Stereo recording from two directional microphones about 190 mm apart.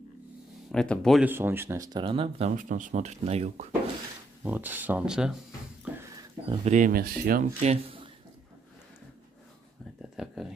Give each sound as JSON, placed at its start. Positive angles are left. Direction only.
{"t": 0.7, "sound": "speech", "side_deg": 0}
{"t": 1.2, "sound": "speech", "side_deg": -10}
{"t": 2.5, "sound": "speech", "side_deg": -40}
{"t": 4.4, "sound": "speech", "side_deg": -10}
{"t": 5.9, "sound": "a sound", "side_deg": -10}
{"t": 6.5, "sound": "speech", "side_deg": -35}
{"t": 7.6, "sound": "speech", "side_deg": -30}
{"t": 10.1, "sound": "a sound", "side_deg": 0}